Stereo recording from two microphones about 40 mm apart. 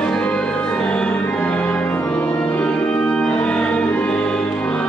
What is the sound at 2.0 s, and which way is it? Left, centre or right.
Organ, left.